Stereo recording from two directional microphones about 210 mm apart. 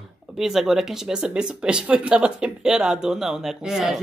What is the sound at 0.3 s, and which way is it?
Speech, centre (ahead or behind).